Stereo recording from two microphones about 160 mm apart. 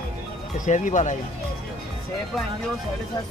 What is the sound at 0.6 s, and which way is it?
Speech, 50° left (ahead or behind).